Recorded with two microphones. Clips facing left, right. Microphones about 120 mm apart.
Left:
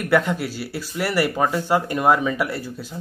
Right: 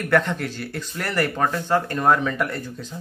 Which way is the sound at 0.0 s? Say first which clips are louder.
Left 1 dB; 5° left (ahead or behind).